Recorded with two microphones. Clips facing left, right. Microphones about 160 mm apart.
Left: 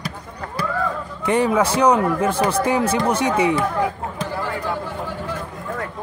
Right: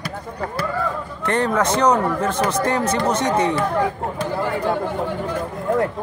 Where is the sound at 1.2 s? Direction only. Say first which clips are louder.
Left 2 dB; 10° left (ahead or behind).